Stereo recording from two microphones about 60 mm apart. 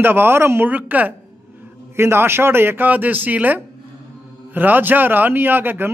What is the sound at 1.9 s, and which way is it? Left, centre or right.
A man's voice, right.